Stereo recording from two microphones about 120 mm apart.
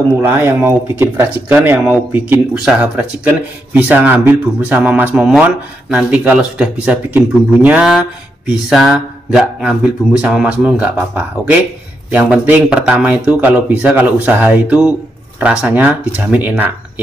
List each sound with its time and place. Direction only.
0.1 s speech: 20° right (ahead or behind)